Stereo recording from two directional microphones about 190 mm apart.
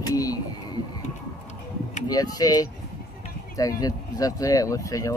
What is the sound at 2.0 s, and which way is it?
Speech, 20° left (ahead or behind).